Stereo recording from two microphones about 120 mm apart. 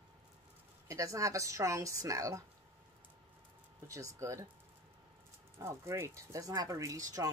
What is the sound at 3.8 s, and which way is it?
Speech, 25° right (ahead or behind).